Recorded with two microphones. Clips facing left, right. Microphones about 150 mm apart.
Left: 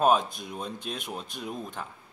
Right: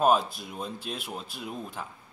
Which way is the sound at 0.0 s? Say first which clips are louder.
Even; 5° right (ahead or behind).